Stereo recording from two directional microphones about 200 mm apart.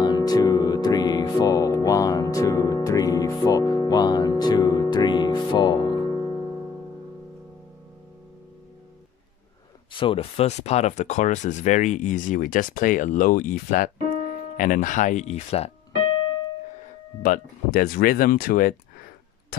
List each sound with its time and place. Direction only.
0.0 s music: 20° left (ahead or behind)
9.9 s speech: 25° left (ahead or behind)
17.2 s speech: 45° left (ahead or behind)